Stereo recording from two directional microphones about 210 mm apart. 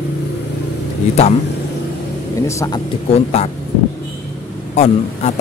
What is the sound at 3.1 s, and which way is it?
Speech, 30° left (ahead or behind).